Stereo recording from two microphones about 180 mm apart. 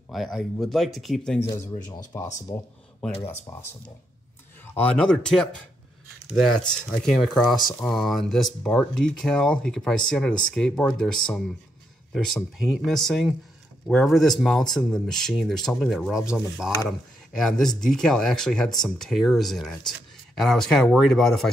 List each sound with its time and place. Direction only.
0.1 s speech: centre (ahead or behind)
2.1 s speech: 15° left (ahead or behind)
4.7 s speech: 5° left (ahead or behind)
6.7 s speech: 5° left (ahead or behind)